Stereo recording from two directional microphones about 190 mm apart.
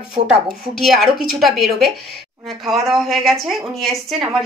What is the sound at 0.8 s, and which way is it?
A woman's voice, centre (ahead or behind).